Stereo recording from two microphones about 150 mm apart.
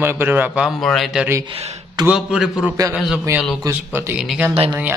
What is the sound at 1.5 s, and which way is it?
Speech, 40° right (ahead or behind).